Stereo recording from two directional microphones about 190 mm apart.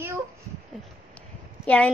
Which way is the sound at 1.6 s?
5° left (ahead or behind).